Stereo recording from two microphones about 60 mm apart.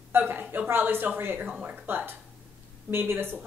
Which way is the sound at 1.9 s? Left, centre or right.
Right.